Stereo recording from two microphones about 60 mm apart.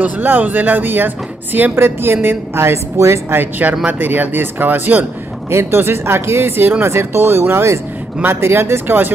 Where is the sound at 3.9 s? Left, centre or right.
Right.